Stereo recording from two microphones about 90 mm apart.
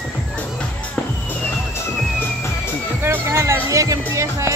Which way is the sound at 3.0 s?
30° right (ahead or behind).